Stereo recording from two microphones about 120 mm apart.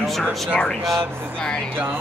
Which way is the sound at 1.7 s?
15° right (ahead or behind).